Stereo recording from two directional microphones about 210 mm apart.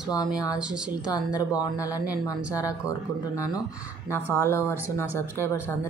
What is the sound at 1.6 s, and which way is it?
Speech, 15° left (ahead or behind).